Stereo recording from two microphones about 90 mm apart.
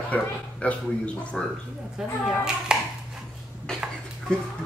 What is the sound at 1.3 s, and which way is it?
Speech, 5° left (ahead or behind).